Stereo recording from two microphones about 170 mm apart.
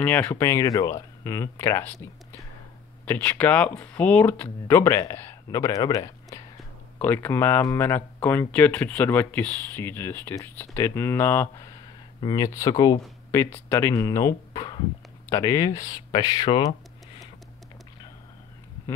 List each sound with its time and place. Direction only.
0.0 s speech: 10° left (ahead or behind)
3.1 s speech: 10° left (ahead or behind); by 16.7 s 25° left (ahead or behind)